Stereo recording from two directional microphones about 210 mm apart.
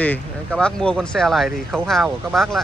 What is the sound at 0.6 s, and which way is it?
Speech, 5° left (ahead or behind).